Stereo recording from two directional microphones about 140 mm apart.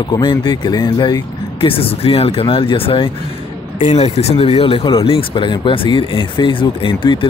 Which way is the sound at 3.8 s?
55° left (ahead or behind).